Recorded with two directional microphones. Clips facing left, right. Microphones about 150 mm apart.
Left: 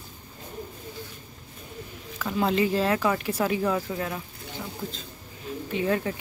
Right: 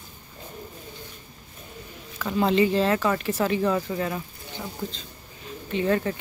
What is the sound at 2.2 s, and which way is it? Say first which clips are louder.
A woman's voice: right 3 dB; centre (ahead or behind).